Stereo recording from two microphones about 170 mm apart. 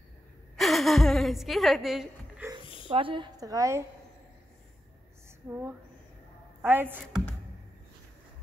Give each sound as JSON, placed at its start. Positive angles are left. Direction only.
{"t": 0.6, "sound": "speech", "side_deg": 0}
{"t": 2.9, "sound": "a woman's voice", "side_deg": -30}
{"t": 5.5, "sound": "a woman's voice", "side_deg": -15}